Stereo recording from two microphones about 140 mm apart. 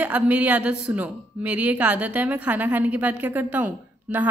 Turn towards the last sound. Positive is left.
turn(degrees=-10)  # may be behind; listen again after turning